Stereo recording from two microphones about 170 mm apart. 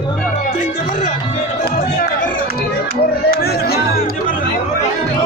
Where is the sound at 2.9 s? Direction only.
65° left (ahead or behind).